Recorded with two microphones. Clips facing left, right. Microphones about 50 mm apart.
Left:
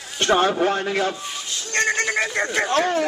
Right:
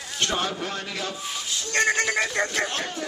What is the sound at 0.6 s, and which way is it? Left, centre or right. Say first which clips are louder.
Speech: left 10 dB; left.